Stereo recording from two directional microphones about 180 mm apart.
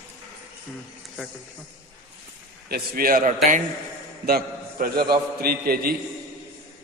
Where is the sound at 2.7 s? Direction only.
55° right (ahead or behind).